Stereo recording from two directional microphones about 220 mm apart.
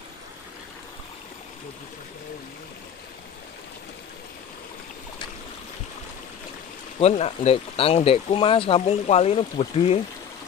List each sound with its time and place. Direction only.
7.0 s speech: 30° left (ahead or behind)